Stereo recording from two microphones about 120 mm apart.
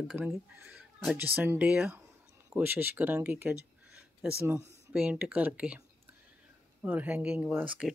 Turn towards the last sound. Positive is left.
turn(degrees=-10)  # may be behind; listen again after turning